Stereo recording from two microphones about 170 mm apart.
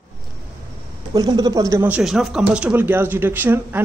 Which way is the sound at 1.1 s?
20° right (ahead or behind).